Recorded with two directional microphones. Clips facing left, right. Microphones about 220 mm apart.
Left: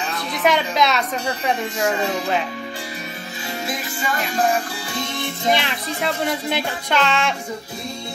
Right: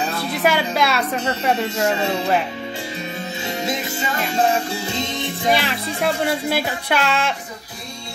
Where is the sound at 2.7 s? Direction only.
25° right (ahead or behind); by 7.4 s 5° right (ahead or behind).